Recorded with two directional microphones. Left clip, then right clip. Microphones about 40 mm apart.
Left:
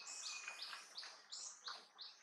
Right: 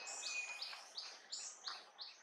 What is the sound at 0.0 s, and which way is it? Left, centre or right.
Bird, right.